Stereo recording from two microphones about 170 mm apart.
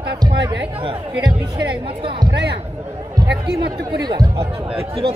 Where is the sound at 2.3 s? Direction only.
80° right.